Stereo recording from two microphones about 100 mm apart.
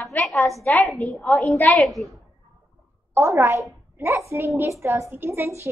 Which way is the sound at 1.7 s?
Centre (ahead or behind).